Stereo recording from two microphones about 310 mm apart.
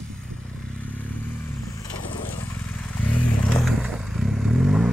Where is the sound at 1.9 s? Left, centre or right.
Left.